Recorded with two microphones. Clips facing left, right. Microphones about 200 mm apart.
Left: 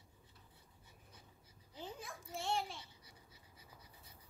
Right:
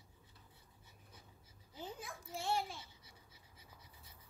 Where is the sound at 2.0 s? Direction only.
Centre (ahead or behind).